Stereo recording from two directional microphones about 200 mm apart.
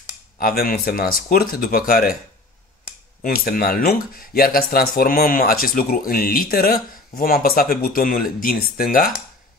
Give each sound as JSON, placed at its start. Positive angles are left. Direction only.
{"t": 0.4, "sound": "speech", "side_deg": 45}
{"t": 3.2, "sound": "speech", "side_deg": 45}